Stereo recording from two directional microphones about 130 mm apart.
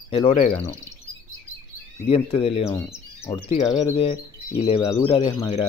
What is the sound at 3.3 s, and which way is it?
Speech, 20° left (ahead or behind).